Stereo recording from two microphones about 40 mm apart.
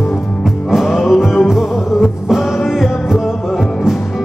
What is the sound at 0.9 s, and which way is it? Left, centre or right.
Music, centre.